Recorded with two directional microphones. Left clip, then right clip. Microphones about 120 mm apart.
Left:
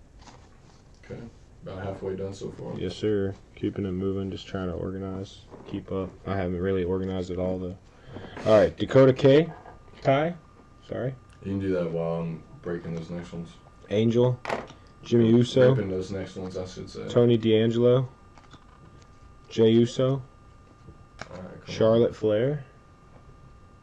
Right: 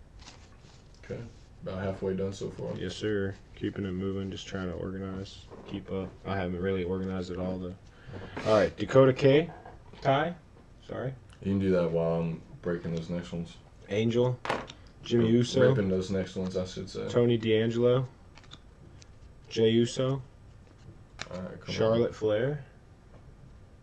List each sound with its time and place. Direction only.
1.6 s speech: 5° right (ahead or behind)
11.4 s speech: 5° right (ahead or behind)
19.5 s speech: 5° right (ahead or behind)
21.2 s computer keyboard: 25° right (ahead or behind)
21.6 s speech: centre (ahead or behind)